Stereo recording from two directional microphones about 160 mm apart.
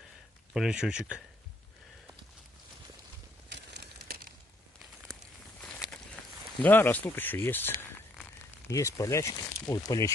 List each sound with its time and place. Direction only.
0.5 s speech: 5° right (ahead or behind)
3.4 s a sound: 90° right
5.6 s walk: 5° left (ahead or behind)
6.6 s speech: 10° left (ahead or behind)